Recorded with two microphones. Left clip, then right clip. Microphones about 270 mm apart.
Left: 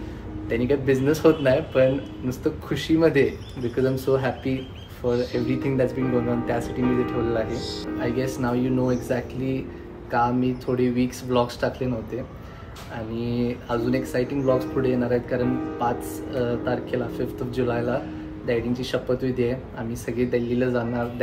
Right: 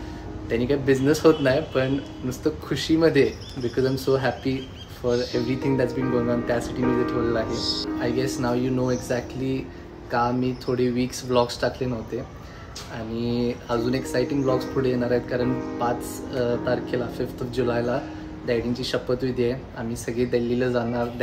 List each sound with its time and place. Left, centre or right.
0.5 s speech: centre
8.0 s speech: centre
13.2 s speech: centre